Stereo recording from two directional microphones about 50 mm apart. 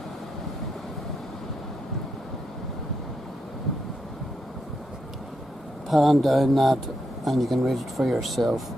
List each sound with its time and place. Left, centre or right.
5.9 s speech: centre